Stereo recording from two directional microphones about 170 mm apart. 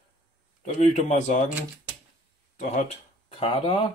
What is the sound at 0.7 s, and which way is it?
Speech, 45° left (ahead or behind).